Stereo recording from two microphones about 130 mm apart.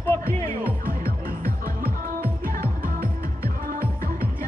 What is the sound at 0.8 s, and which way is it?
Music, 90° right.